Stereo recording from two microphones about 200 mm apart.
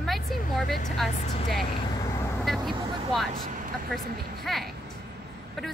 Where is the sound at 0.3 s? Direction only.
Centre (ahead or behind).